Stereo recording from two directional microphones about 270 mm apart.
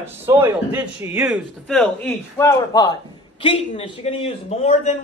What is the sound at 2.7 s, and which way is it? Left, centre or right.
A man's voice, centre.